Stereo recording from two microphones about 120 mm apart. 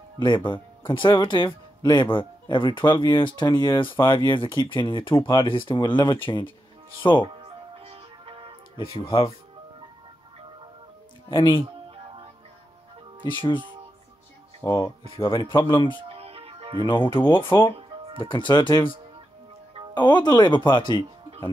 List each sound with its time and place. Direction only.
0.2 s speech: 40° left (ahead or behind)
7.4 s music: 50° right (ahead or behind)
8.9 s speech: 50° left (ahead or behind)
11.2 s speech: 40° left (ahead or behind)
14.6 s speech: 30° left (ahead or behind)
15.1 s speech: 45° left (ahead or behind)
16.1 s music: 55° right (ahead or behind)
16.8 s speech: 45° left (ahead or behind)
17.7 s music: 50° right (ahead or behind)
18.2 s speech: 45° left (ahead or behind)